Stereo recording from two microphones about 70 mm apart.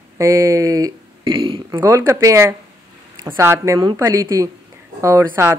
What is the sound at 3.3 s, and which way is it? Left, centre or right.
Speech, right.